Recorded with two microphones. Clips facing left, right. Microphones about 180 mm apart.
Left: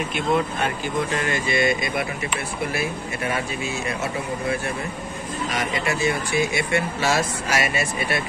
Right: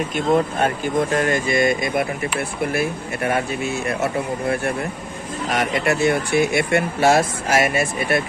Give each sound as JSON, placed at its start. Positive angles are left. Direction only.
{"t": 0.1, "sound": "speech", "side_deg": -45}